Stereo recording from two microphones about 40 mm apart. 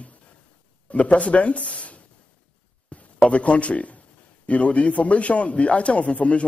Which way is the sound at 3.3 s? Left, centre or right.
Left.